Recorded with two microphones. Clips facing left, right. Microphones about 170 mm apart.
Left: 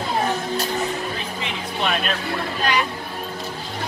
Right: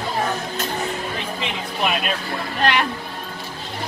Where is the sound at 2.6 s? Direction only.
65° right (ahead or behind).